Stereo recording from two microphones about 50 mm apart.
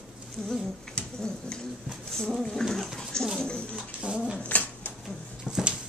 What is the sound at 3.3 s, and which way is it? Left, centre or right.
Bathtub, centre.